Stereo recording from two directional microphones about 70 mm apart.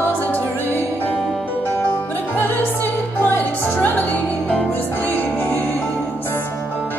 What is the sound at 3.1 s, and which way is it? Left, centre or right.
Music, left.